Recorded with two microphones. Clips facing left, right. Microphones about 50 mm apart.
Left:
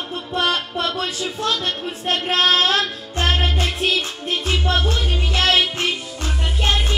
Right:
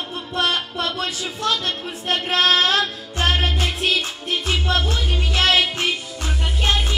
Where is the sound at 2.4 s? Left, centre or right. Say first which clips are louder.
Even; right.